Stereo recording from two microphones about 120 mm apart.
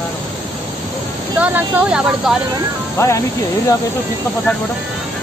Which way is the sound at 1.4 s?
15° right (ahead or behind).